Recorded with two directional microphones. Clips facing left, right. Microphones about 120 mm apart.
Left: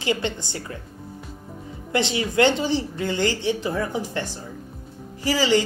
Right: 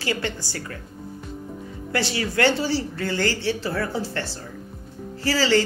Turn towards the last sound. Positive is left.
turn(degrees=15)  # may be behind; listen again after turning